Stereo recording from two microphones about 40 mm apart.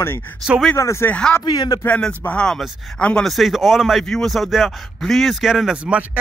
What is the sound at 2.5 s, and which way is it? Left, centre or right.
Speech, centre.